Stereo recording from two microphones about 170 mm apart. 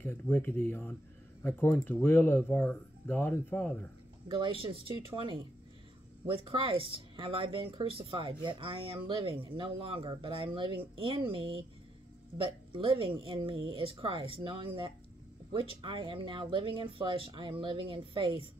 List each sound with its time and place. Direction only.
0.0 s speech: 10° left (ahead or behind)
4.3 s speech: 30° right (ahead or behind)
12.7 s speech: 30° right (ahead or behind)